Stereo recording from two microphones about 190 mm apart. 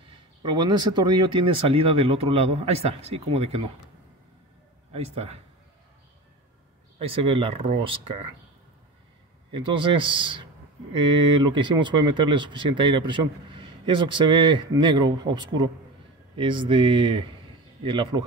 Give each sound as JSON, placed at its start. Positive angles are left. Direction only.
{"t": 0.0, "sound": "speech", "side_deg": -25}
{"t": 4.9, "sound": "a man's voice", "side_deg": -35}
{"t": 7.0, "sound": "speech", "side_deg": -30}
{"t": 9.5, "sound": "speech", "side_deg": -25}